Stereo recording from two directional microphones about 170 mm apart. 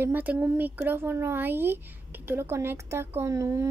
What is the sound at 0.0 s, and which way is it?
Speech, 10° right (ahead or behind).